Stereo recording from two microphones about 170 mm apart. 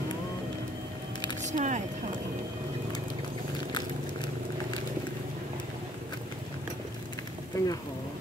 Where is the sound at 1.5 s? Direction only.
45° right (ahead or behind).